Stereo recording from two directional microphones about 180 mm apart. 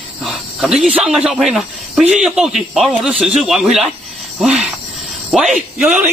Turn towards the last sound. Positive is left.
turn(degrees=-10)  # may be behind; listen again after turning